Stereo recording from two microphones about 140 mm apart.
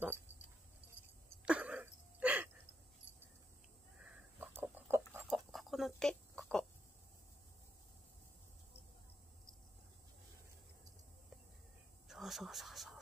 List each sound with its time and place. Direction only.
1.4 s a sound: 10° right (ahead or behind)
4.4 s chicken: 15° right (ahead or behind)
5.3 s chicken: centre (ahead or behind)
12.1 s whispering: centre (ahead or behind)